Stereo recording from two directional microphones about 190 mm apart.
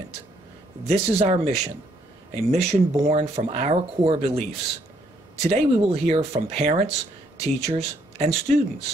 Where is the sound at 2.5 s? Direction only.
35° right (ahead or behind).